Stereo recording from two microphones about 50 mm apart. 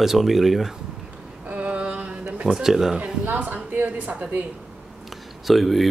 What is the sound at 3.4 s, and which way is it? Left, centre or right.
A woman's voice, right.